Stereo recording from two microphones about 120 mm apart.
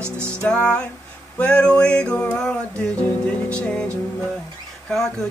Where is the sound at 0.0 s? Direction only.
20° right (ahead or behind).